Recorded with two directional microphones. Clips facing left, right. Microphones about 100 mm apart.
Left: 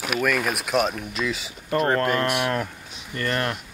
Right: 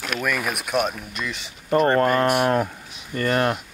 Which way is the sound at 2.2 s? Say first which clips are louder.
Right 5 dB; 45° right (ahead or behind).